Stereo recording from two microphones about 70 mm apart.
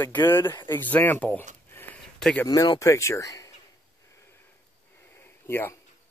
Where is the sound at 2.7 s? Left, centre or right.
Left.